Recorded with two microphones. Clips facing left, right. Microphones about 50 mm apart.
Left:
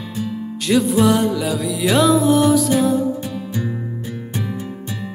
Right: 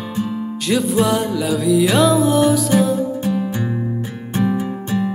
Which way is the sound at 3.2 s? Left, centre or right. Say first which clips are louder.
Right 5 dB; right.